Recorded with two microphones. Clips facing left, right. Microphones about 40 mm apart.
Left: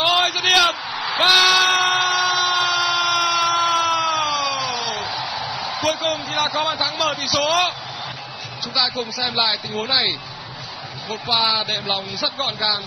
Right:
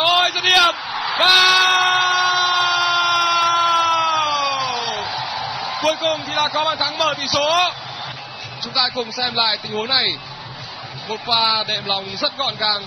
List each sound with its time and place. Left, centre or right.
0.0 s a sound: centre
6.4 s a man's voice: centre
8.7 s speech: centre